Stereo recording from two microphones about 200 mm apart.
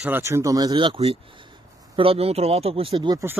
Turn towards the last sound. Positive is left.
turn(degrees=-15)  # may be behind; listen again after turning